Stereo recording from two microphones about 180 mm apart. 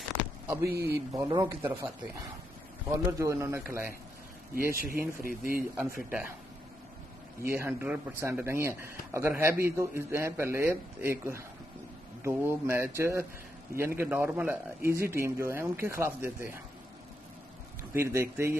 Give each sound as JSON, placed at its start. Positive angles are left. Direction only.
{"t": 0.9, "sound": "speech", "side_deg": -20}
{"t": 2.9, "sound": "a man's voice", "side_deg": -15}
{"t": 4.9, "sound": "a man's voice", "side_deg": -15}
{"t": 5.2, "sound": "speech", "side_deg": -55}
{"t": 5.6, "sound": "a man's voice", "side_deg": -15}
{"t": 7.4, "sound": "a man's voice", "side_deg": -15}
{"t": 17.9, "sound": "a man's voice", "side_deg": -15}